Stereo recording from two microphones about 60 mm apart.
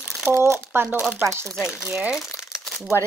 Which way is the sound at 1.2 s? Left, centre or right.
Right.